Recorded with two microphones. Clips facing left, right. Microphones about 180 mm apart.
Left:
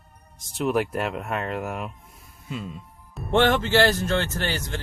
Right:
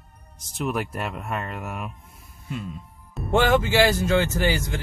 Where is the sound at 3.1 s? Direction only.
5° right (ahead or behind).